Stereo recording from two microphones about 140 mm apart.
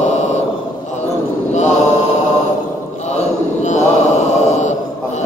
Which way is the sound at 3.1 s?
55° left (ahead or behind).